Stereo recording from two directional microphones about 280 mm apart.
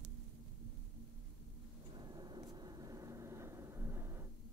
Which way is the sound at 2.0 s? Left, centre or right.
Centre.